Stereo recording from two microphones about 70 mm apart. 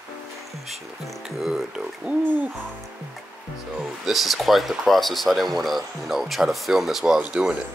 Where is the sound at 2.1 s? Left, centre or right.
Right.